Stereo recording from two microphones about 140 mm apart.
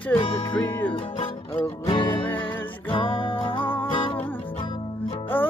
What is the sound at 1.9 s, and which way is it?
Music, 35° left (ahead or behind).